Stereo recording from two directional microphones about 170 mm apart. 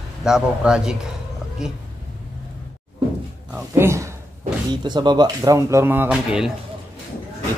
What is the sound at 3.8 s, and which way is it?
Speech, 15° right (ahead or behind).